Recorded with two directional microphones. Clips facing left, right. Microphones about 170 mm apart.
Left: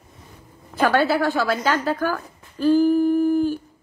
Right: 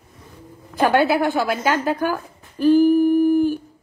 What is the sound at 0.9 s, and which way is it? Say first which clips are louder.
Speech: right 2 dB; 15° right (ahead or behind).